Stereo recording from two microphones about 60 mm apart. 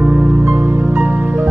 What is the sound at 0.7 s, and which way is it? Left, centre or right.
Music, right.